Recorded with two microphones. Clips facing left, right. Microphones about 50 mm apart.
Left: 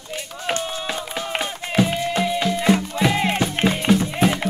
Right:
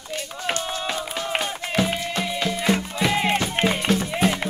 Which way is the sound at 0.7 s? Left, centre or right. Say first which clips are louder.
Even; centre.